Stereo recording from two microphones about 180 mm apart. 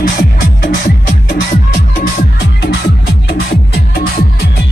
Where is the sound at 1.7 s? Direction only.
50° left (ahead or behind).